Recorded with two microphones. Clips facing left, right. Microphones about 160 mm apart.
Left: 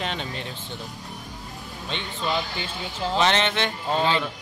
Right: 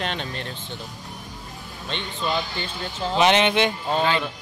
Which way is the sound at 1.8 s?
5° left (ahead or behind).